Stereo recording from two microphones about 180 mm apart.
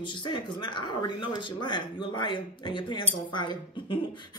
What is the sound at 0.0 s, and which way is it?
Speech, 25° left (ahead or behind).